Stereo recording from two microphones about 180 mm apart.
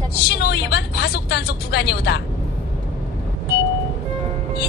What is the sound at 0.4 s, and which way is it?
Speech, 65° left (ahead or behind).